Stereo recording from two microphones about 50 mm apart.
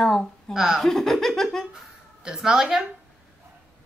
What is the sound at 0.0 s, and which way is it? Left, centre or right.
Speech, centre.